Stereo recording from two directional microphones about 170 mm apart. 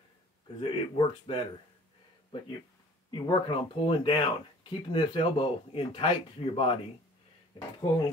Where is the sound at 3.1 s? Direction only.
30° left (ahead or behind).